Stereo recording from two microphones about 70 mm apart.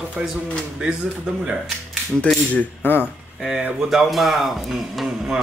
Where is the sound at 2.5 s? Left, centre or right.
Left.